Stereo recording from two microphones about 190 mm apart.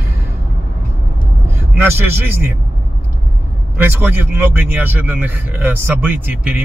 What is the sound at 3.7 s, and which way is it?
A man's voice, 10° right (ahead or behind).